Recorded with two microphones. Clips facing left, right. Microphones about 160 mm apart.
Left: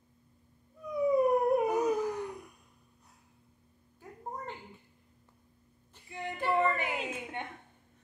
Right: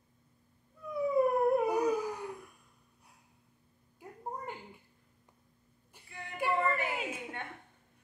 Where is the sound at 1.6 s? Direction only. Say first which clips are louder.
Left 1 dB; 10° right (ahead or behind).